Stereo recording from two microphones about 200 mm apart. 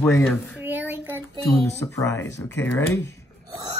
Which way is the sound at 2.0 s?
15° left (ahead or behind).